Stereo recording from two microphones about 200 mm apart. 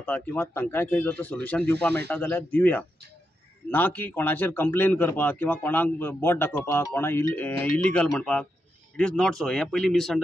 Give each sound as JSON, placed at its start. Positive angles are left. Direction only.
{"t": 0.0, "sound": "a man's voice", "side_deg": 10}